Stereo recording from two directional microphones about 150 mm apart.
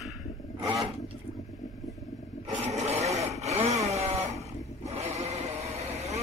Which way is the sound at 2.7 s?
45° right (ahead or behind).